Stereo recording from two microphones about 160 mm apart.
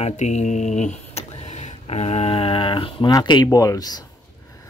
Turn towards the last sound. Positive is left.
turn(degrees=20)  # may be behind; listen again after turning